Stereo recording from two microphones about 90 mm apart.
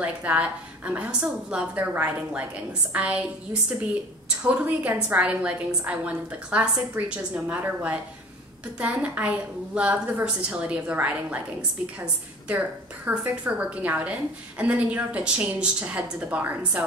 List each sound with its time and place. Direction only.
0.0 s a woman's voice: 15° right (ahead or behind)
4.4 s a woman's voice: 15° right (ahead or behind)
12.4 s a woman's voice: 20° right (ahead or behind)